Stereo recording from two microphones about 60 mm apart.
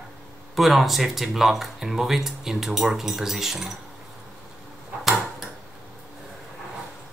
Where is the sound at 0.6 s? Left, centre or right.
Centre.